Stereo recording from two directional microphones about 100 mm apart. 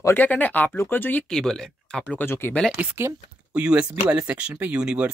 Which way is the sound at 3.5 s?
10° right (ahead or behind).